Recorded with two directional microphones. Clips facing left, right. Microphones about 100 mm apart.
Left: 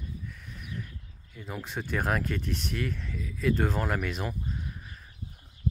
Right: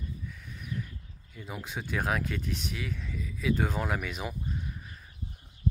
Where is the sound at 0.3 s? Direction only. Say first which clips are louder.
Right 2 dB; centre (ahead or behind).